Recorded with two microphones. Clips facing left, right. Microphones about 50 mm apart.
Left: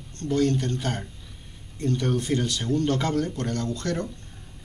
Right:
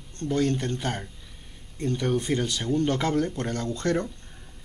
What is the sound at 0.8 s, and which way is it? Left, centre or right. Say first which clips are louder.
Speech: left 1 dB; centre.